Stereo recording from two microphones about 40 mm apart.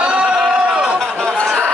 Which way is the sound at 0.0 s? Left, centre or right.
Right.